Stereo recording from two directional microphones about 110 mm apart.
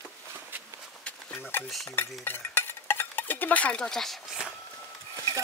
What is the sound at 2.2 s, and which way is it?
Dishes, 20° left (ahead or behind).